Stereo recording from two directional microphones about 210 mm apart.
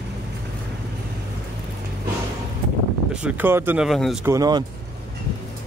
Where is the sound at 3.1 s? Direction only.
5° right (ahead or behind).